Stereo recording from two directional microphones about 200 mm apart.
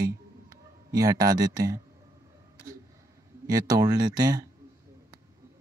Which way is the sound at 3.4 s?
20° right (ahead or behind).